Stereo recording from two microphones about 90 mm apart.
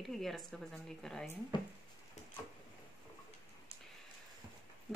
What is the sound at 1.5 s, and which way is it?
Speech, 60° left (ahead or behind).